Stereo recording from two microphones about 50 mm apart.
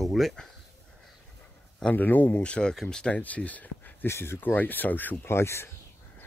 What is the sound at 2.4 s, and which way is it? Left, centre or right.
Speech, centre.